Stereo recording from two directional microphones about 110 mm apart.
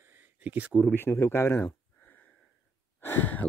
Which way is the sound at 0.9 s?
20° left (ahead or behind).